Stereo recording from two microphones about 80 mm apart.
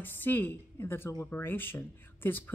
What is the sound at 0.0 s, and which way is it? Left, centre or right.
A woman's voice, left.